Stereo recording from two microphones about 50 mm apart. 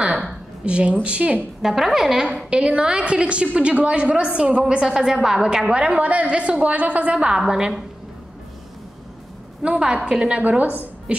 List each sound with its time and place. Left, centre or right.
0.0 s a woman's voice: centre
1.6 s a woman's voice: centre
2.5 s a woman's voice: right
5.7 s a woman's voice: right
9.6 s a woman's voice: centre